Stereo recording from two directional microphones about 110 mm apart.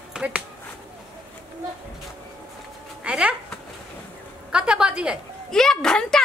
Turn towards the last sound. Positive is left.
turn(degrees=5)  # may be behind; listen again after turning